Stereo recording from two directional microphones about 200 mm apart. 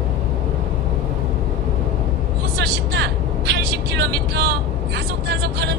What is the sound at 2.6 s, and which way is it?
Vehicle, 55° right (ahead or behind).